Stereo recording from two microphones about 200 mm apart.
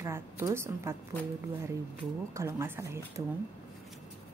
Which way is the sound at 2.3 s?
15° right (ahead or behind).